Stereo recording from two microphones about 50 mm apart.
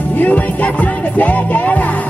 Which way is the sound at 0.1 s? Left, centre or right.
Left.